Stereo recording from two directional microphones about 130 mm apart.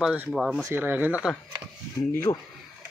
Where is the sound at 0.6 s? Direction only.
15° right (ahead or behind).